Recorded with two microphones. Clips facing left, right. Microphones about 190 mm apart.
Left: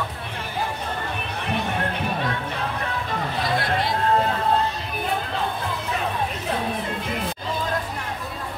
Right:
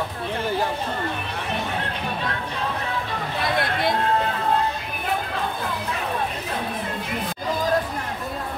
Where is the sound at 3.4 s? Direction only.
55° right (ahead or behind).